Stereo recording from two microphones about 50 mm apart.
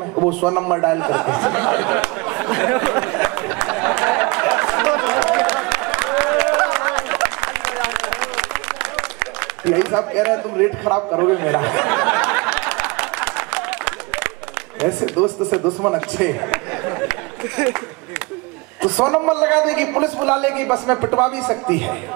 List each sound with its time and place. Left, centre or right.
0.1 s a man's voice: centre
3.6 s chatter: centre
6.0 s a sound: centre
14.8 s a man's voice: right
18.8 s a man's voice: right